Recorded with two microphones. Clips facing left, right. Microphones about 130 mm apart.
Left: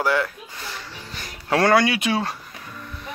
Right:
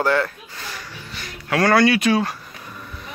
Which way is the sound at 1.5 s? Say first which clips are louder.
Right 1 dB; 20° left (ahead or behind).